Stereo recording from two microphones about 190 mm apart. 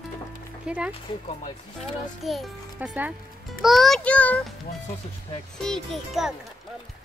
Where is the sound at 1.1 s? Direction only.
25° left (ahead or behind).